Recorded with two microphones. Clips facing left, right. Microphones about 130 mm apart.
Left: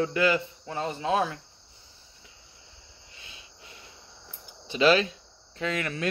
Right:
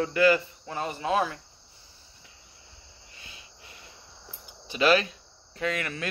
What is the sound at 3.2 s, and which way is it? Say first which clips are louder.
Cricket: right 1 dB; 25° left (ahead or behind).